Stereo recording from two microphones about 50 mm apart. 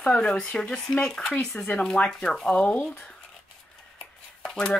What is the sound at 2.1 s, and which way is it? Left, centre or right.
Speech, centre.